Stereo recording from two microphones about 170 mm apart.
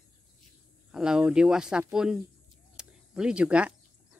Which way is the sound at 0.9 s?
5° right (ahead or behind).